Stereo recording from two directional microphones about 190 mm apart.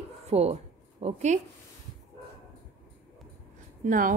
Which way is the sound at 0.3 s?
35° right (ahead or behind).